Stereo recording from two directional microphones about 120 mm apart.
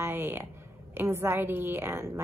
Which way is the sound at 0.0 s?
20° right (ahead or behind).